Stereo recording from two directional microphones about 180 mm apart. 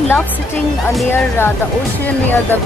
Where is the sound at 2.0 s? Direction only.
10° left (ahead or behind).